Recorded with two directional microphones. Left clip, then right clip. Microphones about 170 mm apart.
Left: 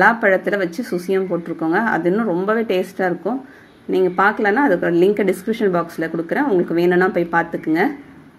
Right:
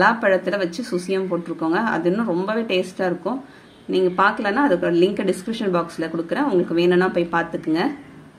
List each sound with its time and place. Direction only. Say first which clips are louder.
0.0 s a woman's voice: left 3 dB; 15° left (ahead or behind)